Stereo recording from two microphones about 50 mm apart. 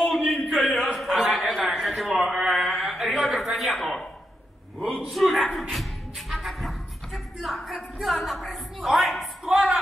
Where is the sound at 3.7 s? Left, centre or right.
Centre.